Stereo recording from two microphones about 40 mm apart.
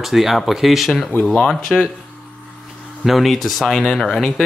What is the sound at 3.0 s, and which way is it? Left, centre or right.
Speech, centre.